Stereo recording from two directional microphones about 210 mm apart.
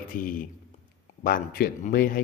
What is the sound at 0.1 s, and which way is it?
Speech, 40° left (ahead or behind).